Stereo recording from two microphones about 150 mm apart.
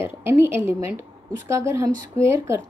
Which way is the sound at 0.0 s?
15° right (ahead or behind).